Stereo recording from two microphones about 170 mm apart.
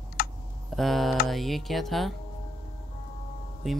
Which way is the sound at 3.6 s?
Centre (ahead or behind).